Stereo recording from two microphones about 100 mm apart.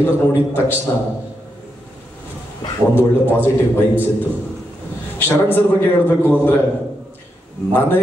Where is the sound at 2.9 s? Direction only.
20° left (ahead or behind).